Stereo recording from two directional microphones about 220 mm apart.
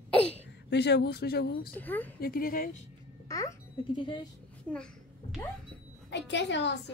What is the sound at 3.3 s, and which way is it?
Speech, 15° left (ahead or behind).